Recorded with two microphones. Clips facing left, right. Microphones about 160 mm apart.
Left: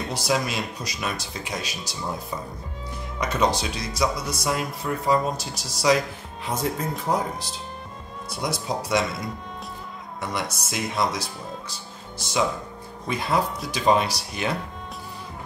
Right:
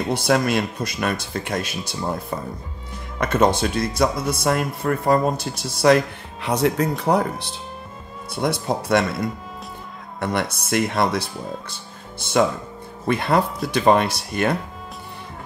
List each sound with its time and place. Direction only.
0.1 s speech: 55° right (ahead or behind)
3.2 s speech: 55° right (ahead or behind)
6.4 s speech: 75° right (ahead or behind); by 9.0 s 55° right (ahead or behind)
10.2 s speech: 55° right (ahead or behind)